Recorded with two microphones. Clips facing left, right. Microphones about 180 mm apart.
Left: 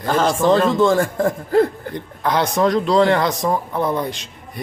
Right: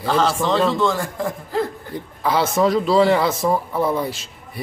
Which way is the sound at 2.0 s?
5° right (ahead or behind).